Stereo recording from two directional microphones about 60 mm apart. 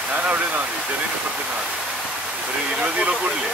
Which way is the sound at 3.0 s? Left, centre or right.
Centre.